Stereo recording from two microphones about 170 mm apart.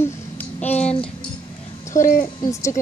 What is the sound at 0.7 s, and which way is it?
Speech, 40° left (ahead or behind).